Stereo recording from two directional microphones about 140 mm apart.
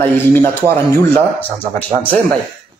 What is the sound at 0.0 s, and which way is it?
Speech, 15° left (ahead or behind).